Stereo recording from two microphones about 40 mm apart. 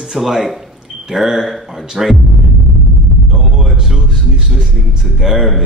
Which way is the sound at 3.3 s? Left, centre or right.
Right.